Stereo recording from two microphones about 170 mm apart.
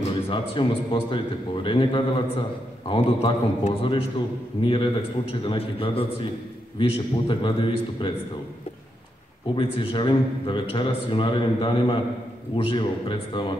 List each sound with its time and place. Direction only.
0.3 s a man's voice: 30° left (ahead or behind)
9.6 s a man's voice: 30° left (ahead or behind)